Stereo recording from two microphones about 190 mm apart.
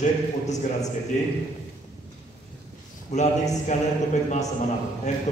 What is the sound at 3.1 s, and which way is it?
Speech, 35° left (ahead or behind).